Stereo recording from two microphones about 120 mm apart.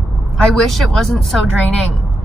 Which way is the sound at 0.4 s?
Centre (ahead or behind).